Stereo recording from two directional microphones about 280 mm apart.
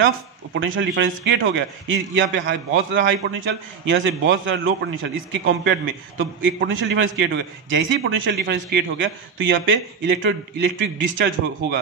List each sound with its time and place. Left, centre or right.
0.6 s a man's voice: right